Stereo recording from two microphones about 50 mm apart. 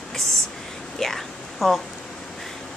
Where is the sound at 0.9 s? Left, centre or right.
Centre.